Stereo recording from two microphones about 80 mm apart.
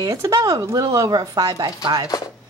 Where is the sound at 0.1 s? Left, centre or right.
Right.